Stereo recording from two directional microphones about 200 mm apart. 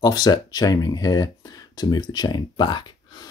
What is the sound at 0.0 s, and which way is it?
Speech, 20° left (ahead or behind).